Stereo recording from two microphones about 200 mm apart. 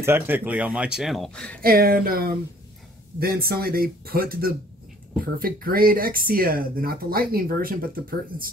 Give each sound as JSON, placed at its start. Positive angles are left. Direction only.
{"t": 0.0, "sound": "speech", "side_deg": -10}
{"t": 1.6, "sound": "speech", "side_deg": -50}